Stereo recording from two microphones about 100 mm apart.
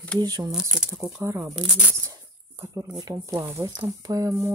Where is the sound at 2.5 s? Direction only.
25° right (ahead or behind).